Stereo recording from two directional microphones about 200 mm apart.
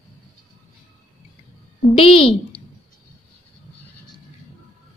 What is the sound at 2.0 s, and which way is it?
Speech, 25° left (ahead or behind).